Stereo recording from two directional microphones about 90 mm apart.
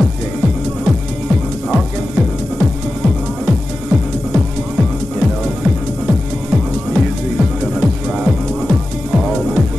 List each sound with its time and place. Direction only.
1.7 s music: 5° right (ahead or behind)